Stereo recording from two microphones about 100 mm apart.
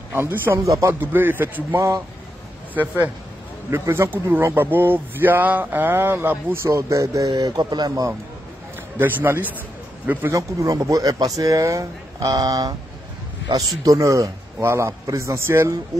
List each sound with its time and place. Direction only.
0.1 s speech: 20° right (ahead or behind)
0.9 s speech: 20° right (ahead or behind)
3.7 s speech: 25° right (ahead or behind)
8.7 s a man's voice: 20° right (ahead or behind)
10.3 s speech: 35° right (ahead or behind)
13.8 s speech: 35° right (ahead or behind)